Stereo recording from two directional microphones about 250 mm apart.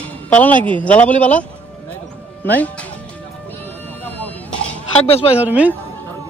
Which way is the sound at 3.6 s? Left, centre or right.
Centre.